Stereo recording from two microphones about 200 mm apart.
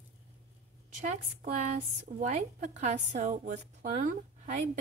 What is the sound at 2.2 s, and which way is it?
A woman's voice, 35° right (ahead or behind).